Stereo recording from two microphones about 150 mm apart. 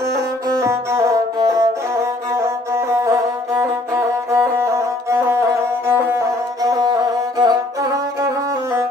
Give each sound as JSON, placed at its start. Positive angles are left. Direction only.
{"t": 0.1, "sound": "music", "side_deg": -20}